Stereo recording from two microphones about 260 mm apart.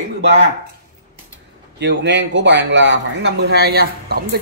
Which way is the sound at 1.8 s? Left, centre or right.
Right.